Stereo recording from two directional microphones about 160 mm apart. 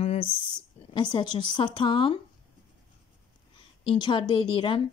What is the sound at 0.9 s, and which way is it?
Speech, 30° left (ahead or behind).